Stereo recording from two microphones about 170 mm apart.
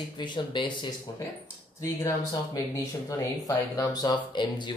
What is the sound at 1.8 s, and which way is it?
Speech, 15° left (ahead or behind).